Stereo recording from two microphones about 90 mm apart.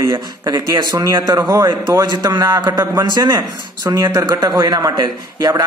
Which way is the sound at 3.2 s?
50° right (ahead or behind).